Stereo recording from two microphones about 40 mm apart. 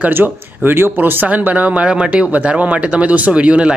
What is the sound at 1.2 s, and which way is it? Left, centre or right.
Speech, right.